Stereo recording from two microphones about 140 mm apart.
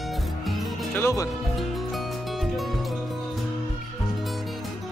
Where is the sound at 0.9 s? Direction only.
20° left (ahead or behind).